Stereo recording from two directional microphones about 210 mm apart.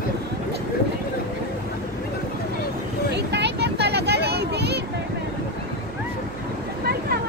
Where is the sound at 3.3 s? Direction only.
55° right (ahead or behind).